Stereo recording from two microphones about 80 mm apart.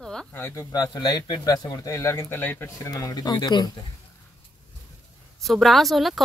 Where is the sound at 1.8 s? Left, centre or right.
Left.